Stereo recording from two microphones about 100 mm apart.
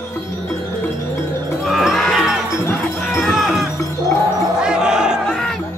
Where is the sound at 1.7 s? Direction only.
Centre (ahead or behind).